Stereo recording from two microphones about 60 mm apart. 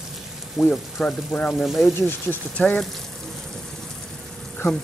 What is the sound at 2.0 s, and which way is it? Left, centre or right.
Speech, left.